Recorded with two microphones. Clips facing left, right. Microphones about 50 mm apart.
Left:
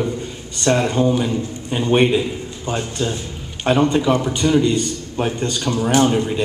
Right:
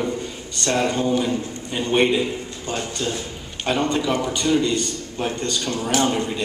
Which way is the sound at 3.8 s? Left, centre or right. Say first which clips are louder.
Left 5 dB; centre.